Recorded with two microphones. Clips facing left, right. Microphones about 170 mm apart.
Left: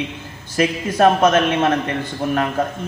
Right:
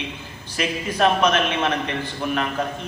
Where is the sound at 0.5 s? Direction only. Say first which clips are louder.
Left 6 dB; 45° left (ahead or behind).